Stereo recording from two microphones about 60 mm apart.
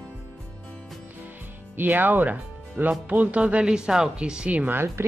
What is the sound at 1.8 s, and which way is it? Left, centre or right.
Speech, right.